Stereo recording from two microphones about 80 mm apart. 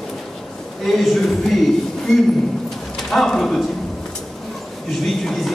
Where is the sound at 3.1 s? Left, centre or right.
Centre.